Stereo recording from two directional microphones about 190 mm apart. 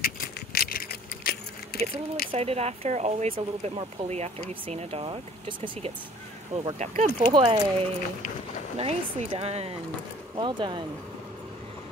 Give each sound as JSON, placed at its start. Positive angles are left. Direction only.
{"t": 0.0, "sound": "keys jangling", "side_deg": 50}
{"t": 2.3, "sound": "speech", "side_deg": -35}
{"t": 8.7, "sound": "speech", "side_deg": -30}